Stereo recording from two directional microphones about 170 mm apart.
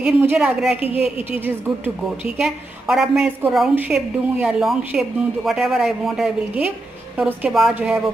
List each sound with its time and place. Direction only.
0.0 s a woman's voice: 10° right (ahead or behind)
0.7 s a woman's voice: 35° left (ahead or behind)
2.3 s a woman's voice: centre (ahead or behind)